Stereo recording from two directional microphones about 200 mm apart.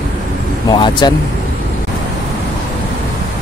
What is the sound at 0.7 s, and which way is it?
Speech, 20° left (ahead or behind).